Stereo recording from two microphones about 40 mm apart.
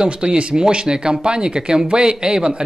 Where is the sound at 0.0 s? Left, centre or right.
Right.